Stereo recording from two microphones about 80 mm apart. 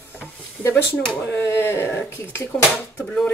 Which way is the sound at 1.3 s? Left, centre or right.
Left.